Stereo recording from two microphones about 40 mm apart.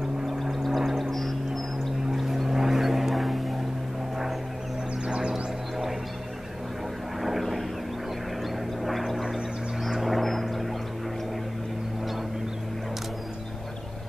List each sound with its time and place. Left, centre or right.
0.3 s vehicle: centre
5.0 s music: right
5.3 s a sound: centre
7.2 s vehicle: centre
8.8 s vehicle: centre
9.8 s a sound: centre